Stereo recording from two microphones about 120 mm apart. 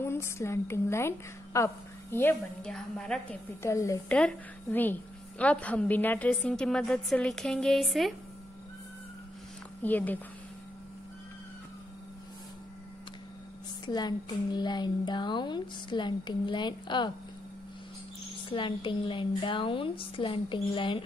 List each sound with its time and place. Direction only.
0.0 s a woman's voice: 20° left (ahead or behind)
2.6 s a woman's voice: 5° left (ahead or behind)
3.6 s a woman's voice: 25° left (ahead or behind)
4.1 s a woman's voice: 10° left (ahead or behind)
9.8 s a woman's voice: 15° left (ahead or behind)
13.8 s speech: 35° left (ahead or behind)
18.5 s a woman's voice: 45° left (ahead or behind)